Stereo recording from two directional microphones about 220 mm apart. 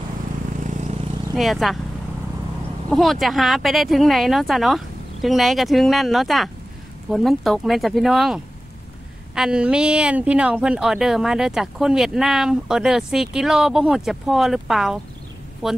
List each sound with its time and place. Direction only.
0.7 s vehicle: 30° right (ahead or behind)
1.3 s speech: centre (ahead or behind)
2.9 s speech: centre (ahead or behind)